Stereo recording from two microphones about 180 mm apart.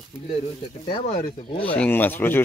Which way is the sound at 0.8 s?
35° left (ahead or behind).